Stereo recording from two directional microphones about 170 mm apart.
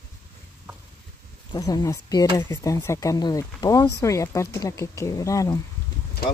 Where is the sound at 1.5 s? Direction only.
25° left (ahead or behind).